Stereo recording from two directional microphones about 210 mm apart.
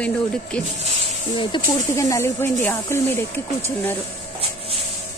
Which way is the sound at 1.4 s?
20° left (ahead or behind).